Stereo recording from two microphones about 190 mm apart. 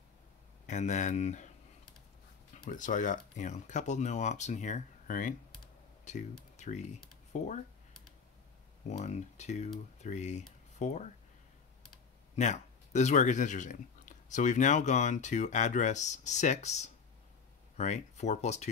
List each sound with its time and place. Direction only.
0.7 s speech: 40° left (ahead or behind)
2.6 s speech: 45° left (ahead or behind)
8.8 s speech: 35° left (ahead or behind)
12.4 s speech: 35° left (ahead or behind)